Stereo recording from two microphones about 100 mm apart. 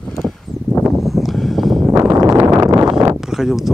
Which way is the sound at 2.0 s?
35° right (ahead or behind).